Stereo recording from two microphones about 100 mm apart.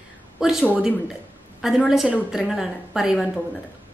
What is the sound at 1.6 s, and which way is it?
A woman's voice, 5° right (ahead or behind).